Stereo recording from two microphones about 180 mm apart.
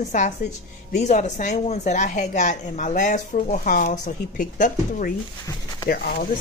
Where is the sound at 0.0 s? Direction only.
40° left (ahead or behind).